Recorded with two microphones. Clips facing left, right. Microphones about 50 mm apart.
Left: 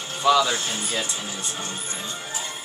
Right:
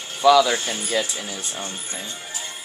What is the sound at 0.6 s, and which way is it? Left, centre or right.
Speech, centre.